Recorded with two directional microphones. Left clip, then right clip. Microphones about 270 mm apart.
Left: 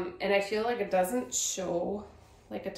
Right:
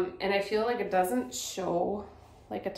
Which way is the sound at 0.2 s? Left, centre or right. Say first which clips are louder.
Left 2 dB; centre.